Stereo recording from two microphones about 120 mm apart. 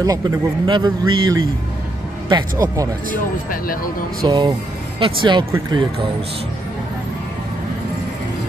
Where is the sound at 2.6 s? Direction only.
30° right (ahead or behind).